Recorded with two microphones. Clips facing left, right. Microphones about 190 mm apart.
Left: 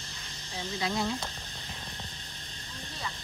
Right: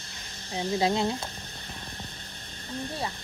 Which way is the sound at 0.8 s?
25° right (ahead or behind).